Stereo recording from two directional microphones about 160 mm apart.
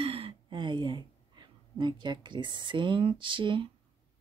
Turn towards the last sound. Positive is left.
turn(degrees=-30)  # may be behind; listen again after turning